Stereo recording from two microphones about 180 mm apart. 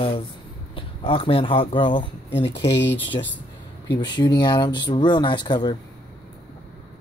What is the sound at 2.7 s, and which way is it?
Speech, 80° left.